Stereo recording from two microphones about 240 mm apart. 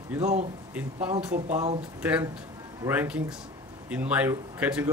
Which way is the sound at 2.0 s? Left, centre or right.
Centre.